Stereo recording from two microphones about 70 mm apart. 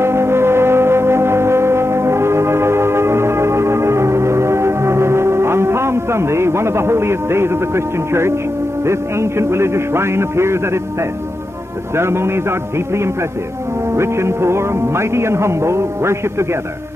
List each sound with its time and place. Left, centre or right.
0.0 s music: right
8.8 s a man's voice: right